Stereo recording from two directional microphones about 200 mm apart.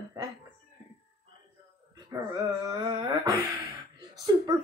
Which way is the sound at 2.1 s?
20° right (ahead or behind).